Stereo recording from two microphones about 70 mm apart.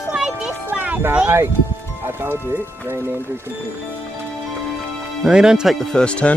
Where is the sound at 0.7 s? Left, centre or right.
Right.